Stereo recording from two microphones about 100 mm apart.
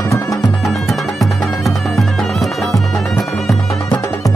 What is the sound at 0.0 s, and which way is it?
Music, 30° left (ahead or behind).